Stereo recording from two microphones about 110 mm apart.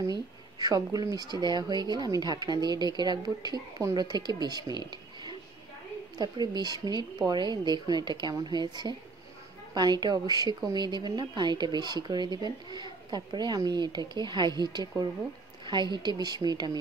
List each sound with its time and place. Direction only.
0.0 s speech: 35° right (ahead or behind)